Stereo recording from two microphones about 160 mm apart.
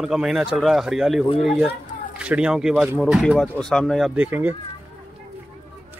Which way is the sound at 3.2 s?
10° left (ahead or behind).